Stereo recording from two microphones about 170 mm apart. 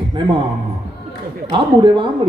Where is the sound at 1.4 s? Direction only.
30° right (ahead or behind).